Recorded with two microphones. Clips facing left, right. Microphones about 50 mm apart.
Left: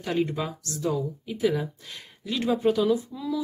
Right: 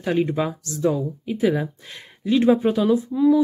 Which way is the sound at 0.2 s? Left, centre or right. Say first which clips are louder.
Right 5 dB; right.